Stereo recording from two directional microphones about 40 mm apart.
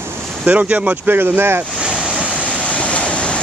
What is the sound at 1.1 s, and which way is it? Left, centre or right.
Speech, right.